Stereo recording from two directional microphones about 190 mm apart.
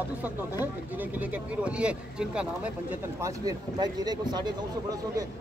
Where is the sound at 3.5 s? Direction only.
20° right (ahead or behind).